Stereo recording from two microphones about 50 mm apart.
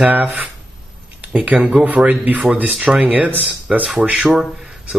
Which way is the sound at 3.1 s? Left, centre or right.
Right.